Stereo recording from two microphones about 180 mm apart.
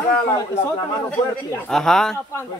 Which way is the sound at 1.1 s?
5° left (ahead or behind).